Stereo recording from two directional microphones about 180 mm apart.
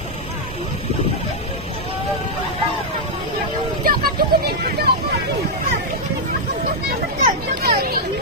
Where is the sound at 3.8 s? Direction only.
55° right (ahead or behind).